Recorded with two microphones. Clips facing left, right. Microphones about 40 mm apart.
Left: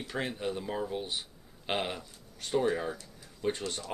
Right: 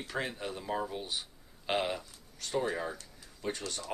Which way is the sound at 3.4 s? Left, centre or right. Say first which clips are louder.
Left 4 dB; left.